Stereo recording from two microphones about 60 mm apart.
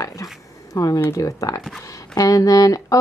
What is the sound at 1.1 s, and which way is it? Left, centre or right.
Speech, left.